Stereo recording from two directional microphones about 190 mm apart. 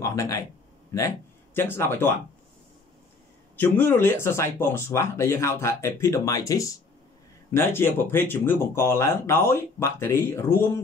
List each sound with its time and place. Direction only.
0.0 s a sound: 15° left (ahead or behind)
0.9 s speech: 15° left (ahead or behind)
3.5 s speech: 10° left (ahead or behind)